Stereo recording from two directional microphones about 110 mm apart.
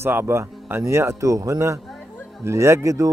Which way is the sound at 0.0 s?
20° right (ahead or behind).